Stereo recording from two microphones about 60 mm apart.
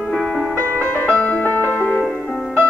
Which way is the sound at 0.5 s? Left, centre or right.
Left.